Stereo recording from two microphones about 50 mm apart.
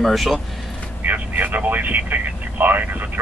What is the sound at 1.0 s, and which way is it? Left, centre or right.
Speech, right.